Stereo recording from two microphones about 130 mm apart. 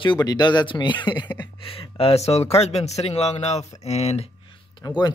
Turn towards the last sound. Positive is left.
turn(degrees=25)  # may be behind; listen again after turning